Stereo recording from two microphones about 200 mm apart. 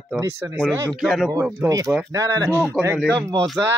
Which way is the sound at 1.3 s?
15° right (ahead or behind).